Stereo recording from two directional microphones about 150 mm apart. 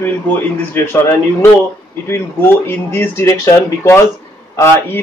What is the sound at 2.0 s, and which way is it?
Speech, 15° left (ahead or behind).